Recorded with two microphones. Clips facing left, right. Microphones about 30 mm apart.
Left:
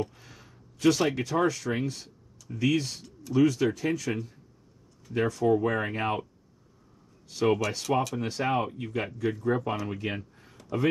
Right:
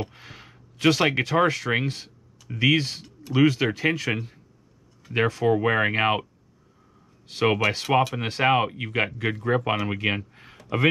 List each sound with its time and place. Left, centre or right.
0.0 s speech: right
7.2 s speech: right